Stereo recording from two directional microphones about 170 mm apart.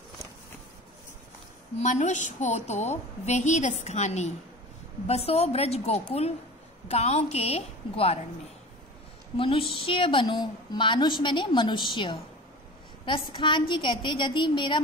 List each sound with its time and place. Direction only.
1.8 s a woman's voice: 45° left (ahead or behind)
9.4 s a woman's voice: 30° left (ahead or behind)